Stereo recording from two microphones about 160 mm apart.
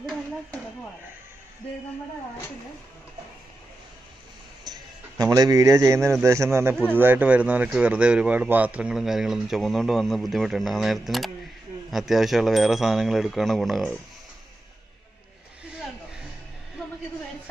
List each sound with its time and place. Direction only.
4.6 s a man's voice: 25° right (ahead or behind); by 13.9 s centre (ahead or behind)